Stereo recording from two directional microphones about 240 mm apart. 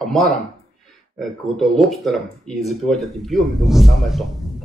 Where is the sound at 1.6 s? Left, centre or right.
Centre.